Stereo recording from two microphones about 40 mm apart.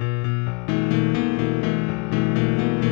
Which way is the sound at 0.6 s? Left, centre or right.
Centre.